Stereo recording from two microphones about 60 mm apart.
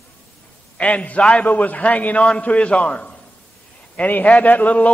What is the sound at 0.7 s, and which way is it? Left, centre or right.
A man's voice, left.